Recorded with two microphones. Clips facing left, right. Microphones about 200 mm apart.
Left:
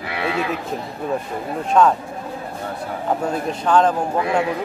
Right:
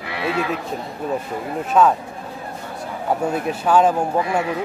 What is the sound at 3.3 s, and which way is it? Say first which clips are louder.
Speech: even; 10° right (ahead or behind).